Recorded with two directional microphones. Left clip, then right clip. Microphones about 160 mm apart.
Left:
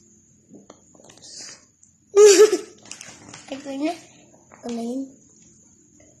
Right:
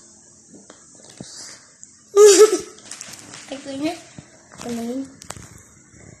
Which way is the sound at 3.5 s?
15° left (ahead or behind).